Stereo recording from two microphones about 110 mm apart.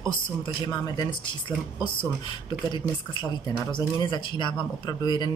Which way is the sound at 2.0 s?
45° left (ahead or behind).